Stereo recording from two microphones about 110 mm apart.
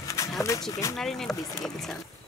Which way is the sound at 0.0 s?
30° left (ahead or behind).